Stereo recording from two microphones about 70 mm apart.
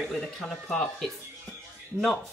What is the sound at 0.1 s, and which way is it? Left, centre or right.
Speech, centre.